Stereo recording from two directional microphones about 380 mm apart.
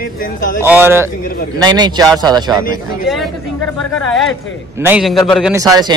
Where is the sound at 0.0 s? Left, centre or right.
Left.